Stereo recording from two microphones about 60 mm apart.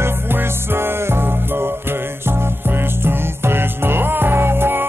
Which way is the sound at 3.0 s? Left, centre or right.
Right.